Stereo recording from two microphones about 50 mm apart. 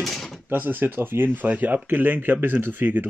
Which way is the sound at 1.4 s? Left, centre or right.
Right.